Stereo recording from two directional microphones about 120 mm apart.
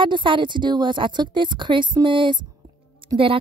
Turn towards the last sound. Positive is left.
turn(degrees=-45)  # may be behind; listen again after turning